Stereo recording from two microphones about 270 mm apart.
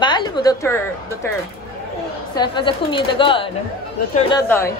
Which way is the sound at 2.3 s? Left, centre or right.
Centre.